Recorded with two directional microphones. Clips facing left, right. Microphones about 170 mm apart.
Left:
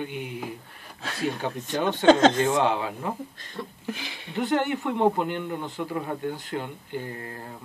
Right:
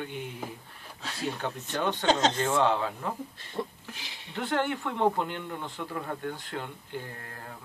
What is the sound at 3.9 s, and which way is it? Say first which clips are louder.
Speech: left 11 dB; 60° left (ahead or behind).